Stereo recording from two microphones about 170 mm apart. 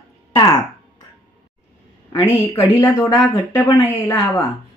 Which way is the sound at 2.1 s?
20° left (ahead or behind).